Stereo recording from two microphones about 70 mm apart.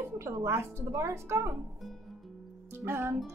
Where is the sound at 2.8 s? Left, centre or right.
Right.